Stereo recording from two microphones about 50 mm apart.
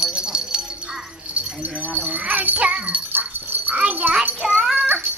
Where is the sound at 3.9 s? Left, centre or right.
Right.